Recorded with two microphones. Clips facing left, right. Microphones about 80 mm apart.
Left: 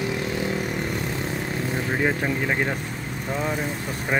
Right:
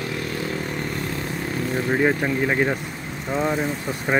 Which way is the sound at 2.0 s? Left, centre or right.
Centre.